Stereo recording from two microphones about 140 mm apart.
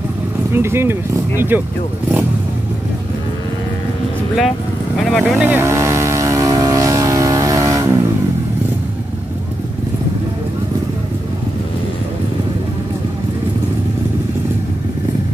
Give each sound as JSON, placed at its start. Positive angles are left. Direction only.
{"t": 0.5, "sound": "speech", "side_deg": -15}
{"t": 5.0, "sound": "speech", "side_deg": 0}
{"t": 5.4, "sound": "vehicle", "side_deg": -15}